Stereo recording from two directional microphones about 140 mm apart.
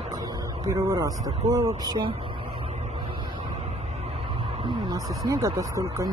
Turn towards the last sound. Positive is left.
turn(degrees=-20)  # may be behind; listen again after turning